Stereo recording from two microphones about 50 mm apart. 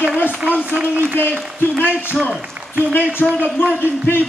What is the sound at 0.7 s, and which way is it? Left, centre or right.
Speech, right.